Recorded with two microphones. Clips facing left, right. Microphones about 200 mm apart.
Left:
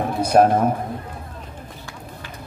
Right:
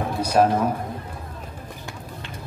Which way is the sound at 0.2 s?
55° left (ahead or behind).